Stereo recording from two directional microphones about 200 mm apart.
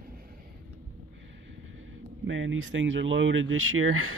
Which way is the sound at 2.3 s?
75° right (ahead or behind).